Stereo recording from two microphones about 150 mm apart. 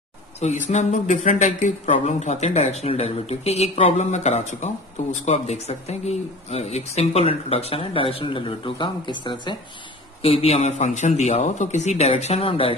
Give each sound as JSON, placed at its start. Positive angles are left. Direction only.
{"t": 0.4, "sound": "speech", "side_deg": 50}